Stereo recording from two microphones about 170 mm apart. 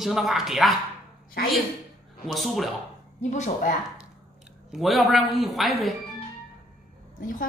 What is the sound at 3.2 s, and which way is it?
Speech, 45° left (ahead or behind).